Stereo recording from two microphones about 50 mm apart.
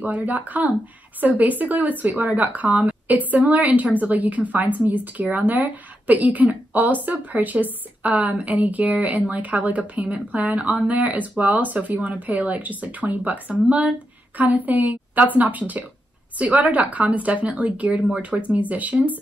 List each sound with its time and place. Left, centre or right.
0.0 s a woman's voice: right